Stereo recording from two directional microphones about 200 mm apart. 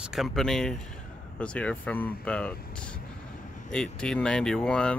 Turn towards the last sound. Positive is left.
turn(degrees=5)  # may be behind; listen again after turning